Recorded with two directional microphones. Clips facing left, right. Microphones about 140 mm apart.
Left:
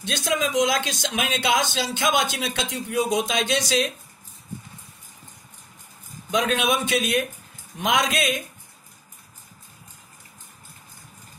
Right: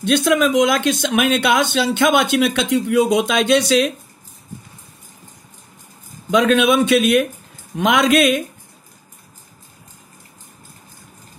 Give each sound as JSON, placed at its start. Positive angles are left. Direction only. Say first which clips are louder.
{"t": 0.0, "sound": "speech", "louder": "right 10 dB", "side_deg": -60}
{"t": 6.3, "sound": "speech", "louder": "right 8 dB", "side_deg": -65}